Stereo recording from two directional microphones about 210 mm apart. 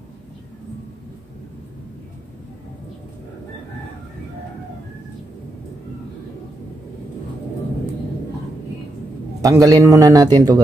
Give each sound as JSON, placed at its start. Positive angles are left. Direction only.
{"t": 9.4, "sound": "a man's voice", "side_deg": -15}